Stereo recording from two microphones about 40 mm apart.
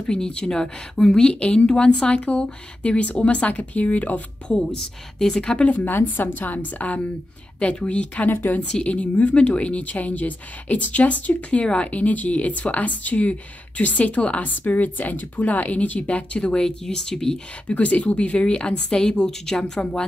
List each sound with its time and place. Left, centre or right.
0.0 s speech: left
4.6 s a woman's voice: centre
5.7 s a woman's voice: left
7.5 s speech: left
8.3 s a woman's voice: left
8.8 s speech: left
11.6 s speech: left
11.9 s speech: left
14.4 s speech: left
16.3 s a woman's voice: left
17.6 s speech: left